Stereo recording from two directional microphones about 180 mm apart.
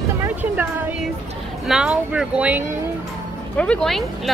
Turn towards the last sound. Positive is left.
turn(degrees=0)  # may be behind; listen again after turning